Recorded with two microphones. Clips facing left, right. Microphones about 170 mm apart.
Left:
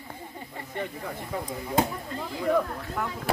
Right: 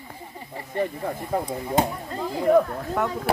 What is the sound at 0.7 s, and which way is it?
Speech, 40° right (ahead or behind).